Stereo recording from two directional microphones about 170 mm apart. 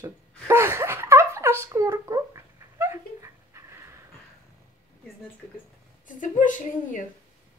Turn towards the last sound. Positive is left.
turn(degrees=50)  # may be behind; listen again after turning